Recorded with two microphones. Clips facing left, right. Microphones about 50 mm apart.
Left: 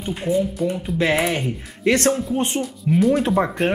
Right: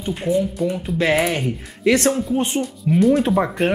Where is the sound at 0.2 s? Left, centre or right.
Centre.